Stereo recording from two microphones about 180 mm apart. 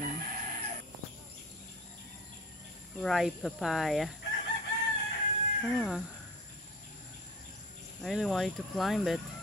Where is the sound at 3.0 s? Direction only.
Centre (ahead or behind).